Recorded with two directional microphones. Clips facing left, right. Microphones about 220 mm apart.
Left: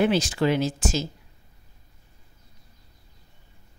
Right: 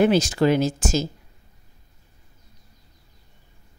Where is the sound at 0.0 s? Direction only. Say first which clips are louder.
Right 4 dB; 45° right (ahead or behind).